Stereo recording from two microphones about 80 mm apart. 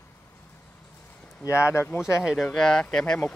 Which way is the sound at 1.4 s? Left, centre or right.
Left.